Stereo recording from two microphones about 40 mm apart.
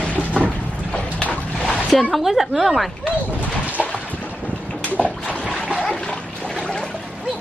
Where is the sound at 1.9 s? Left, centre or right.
Centre.